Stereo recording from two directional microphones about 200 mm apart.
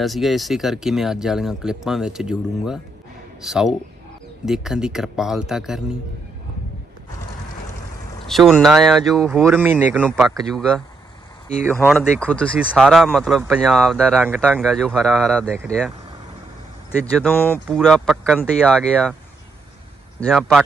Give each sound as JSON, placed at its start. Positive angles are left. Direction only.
{"t": 0.0, "sound": "speech", "side_deg": 0}
{"t": 8.3, "sound": "speech", "side_deg": 0}
{"t": 9.5, "sound": "speech", "side_deg": -10}
{"t": 10.0, "sound": "speech", "side_deg": 0}
{"t": 11.9, "sound": "speech", "side_deg": 5}
{"t": 17.0, "sound": "speech", "side_deg": 5}
{"t": 20.2, "sound": "speech", "side_deg": 5}